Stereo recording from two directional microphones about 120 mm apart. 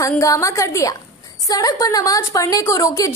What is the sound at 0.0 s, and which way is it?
A woman's voice, 25° left (ahead or behind).